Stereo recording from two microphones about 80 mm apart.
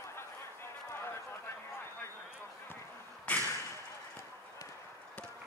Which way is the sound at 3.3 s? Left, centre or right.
Centre.